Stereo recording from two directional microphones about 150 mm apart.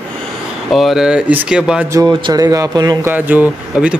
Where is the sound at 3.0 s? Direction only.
10° right (ahead or behind).